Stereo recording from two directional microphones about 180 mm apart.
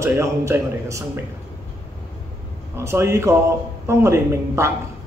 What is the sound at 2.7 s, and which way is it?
A man's voice, 15° right (ahead or behind).